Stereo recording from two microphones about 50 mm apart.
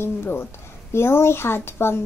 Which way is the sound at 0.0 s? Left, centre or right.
Left.